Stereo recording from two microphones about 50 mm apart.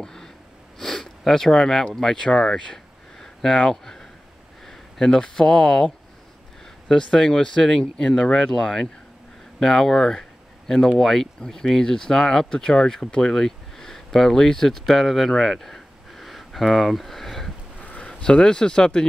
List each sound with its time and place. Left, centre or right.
0.0 s snort: centre
0.7 s sniff: centre
2.0 s speech: centre
17.7 s a sound: left